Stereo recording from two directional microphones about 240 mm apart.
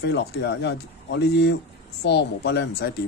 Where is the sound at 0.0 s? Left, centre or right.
Left.